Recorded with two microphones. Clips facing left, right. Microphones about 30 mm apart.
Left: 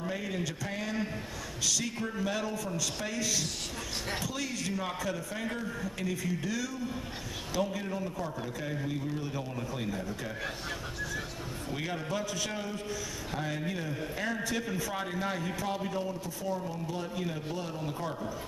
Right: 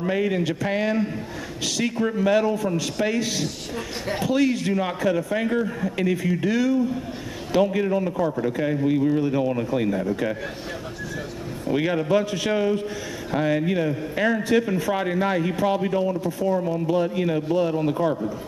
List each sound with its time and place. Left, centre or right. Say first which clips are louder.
0.0 s a man's voice: right 12 dB; right
11.7 s a man's voice: right 14 dB; right